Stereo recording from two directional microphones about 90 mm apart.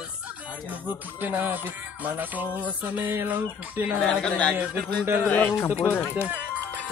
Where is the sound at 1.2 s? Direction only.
20° right (ahead or behind).